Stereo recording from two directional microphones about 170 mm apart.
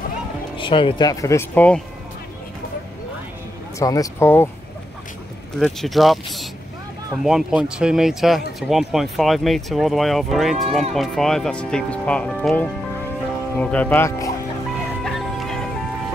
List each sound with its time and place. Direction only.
0.6 s speech: 30° left (ahead or behind); by 1.8 s 10° left (ahead or behind)
3.8 s speech: 20° left (ahead or behind)
5.6 s speech: centre (ahead or behind); by 14.3 s 15° left (ahead or behind)
15.0 s music: centre (ahead or behind)